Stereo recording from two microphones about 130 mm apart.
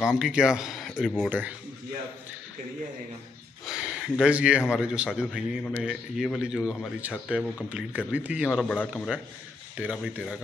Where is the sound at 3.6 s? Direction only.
5° right (ahead or behind).